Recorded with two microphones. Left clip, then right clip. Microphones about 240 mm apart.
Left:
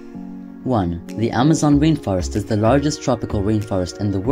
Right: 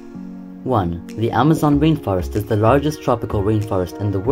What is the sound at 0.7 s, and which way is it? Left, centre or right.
Speech, left.